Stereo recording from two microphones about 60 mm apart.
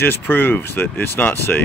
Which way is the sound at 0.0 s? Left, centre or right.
Left.